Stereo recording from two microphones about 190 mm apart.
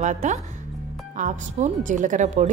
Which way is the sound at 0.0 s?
40° right (ahead or behind).